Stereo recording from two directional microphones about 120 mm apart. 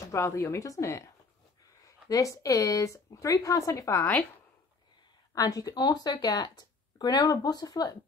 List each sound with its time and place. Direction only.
0.1 s speech: 25° left (ahead or behind)
5.3 s speech: 30° left (ahead or behind)